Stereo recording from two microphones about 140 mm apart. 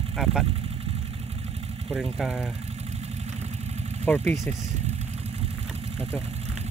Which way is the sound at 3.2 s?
50° right (ahead or behind).